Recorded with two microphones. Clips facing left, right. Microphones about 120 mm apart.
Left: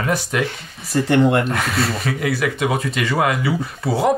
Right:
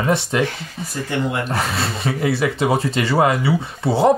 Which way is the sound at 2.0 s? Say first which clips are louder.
Right 2 dB; 30° right (ahead or behind).